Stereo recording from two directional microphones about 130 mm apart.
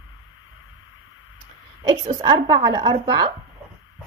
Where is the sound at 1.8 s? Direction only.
35° right (ahead or behind).